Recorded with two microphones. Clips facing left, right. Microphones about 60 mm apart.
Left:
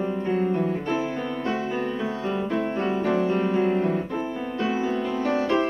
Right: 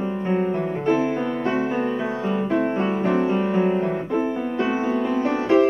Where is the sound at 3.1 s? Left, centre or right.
Right.